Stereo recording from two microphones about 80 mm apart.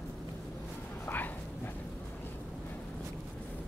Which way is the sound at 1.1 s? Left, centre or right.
Left.